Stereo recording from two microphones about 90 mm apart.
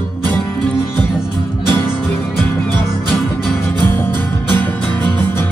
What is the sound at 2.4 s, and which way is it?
Music, 20° left (ahead or behind).